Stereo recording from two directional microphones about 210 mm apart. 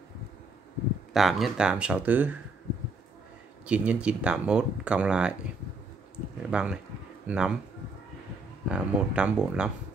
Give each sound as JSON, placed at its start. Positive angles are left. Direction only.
{"t": 1.1, "sound": "speech", "side_deg": 0}
{"t": 3.6, "sound": "speech", "side_deg": -5}
{"t": 6.5, "sound": "speech", "side_deg": -5}
{"t": 8.6, "sound": "speech", "side_deg": -5}